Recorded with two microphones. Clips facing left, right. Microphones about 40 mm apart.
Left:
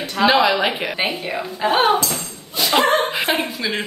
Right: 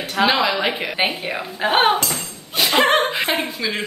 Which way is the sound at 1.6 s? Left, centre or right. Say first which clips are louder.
Even; right.